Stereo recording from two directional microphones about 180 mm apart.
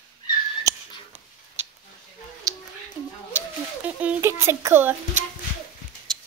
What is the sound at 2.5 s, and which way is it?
Cat, 20° right (ahead or behind).